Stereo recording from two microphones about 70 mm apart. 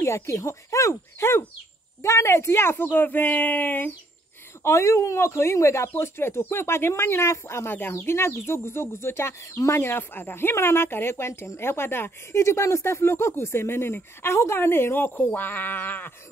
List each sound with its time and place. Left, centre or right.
0.0 s speech: left
4.6 s speech: left